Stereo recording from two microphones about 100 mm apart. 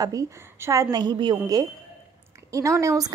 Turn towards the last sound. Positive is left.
turn(degrees=-35)  # may be behind; listen again after turning